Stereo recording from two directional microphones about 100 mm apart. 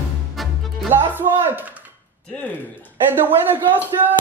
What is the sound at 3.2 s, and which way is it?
Speech, 20° right (ahead or behind).